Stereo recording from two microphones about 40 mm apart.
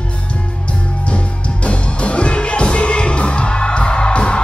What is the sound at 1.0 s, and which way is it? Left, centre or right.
Music, left.